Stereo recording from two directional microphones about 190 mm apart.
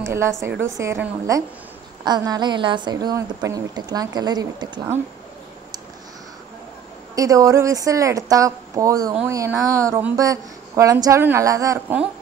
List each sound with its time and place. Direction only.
0.0 s a woman's voice: 15° right (ahead or behind)
7.2 s a woman's voice: 15° right (ahead or behind)